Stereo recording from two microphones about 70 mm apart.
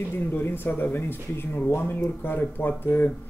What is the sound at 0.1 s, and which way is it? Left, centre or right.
Speech, left.